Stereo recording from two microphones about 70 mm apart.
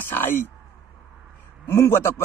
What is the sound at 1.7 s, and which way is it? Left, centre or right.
Speech, left.